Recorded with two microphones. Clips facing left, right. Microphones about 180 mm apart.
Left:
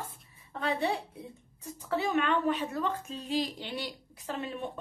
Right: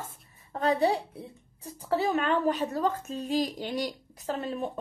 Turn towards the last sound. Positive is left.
turn(degrees=-40)  # may be behind; listen again after turning